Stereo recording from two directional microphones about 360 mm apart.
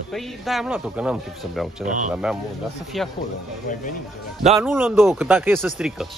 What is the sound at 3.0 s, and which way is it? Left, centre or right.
Speech, centre.